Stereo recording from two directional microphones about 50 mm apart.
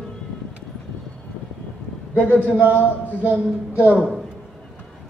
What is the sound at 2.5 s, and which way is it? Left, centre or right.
Speech, right.